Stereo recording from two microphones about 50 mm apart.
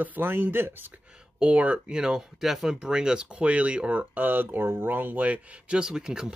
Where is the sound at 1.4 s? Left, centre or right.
Right.